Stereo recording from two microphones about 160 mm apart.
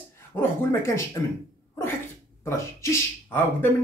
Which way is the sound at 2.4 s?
15° left (ahead or behind).